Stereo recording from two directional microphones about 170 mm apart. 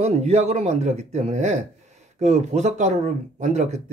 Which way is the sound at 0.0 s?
40° right (ahead or behind).